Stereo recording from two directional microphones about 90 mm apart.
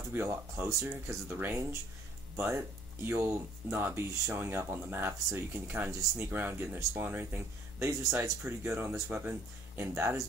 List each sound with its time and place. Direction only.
0.1 s speech: 25° right (ahead or behind)